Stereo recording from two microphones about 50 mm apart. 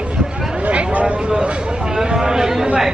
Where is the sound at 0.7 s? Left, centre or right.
Right.